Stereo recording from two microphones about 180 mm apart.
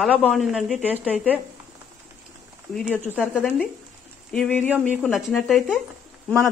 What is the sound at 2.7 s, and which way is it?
Speech, centre (ahead or behind).